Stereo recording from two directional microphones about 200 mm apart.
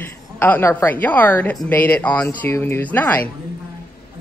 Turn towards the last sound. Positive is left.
turn(degrees=10)  # may be behind; listen again after turning